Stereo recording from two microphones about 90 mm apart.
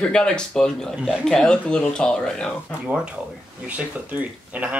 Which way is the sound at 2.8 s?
10° right (ahead or behind).